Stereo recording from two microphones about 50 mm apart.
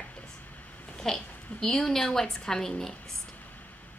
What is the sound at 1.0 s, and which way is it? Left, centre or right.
A woman's voice, centre.